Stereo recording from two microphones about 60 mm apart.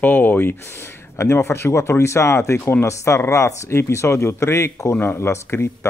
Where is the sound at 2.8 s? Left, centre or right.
Left.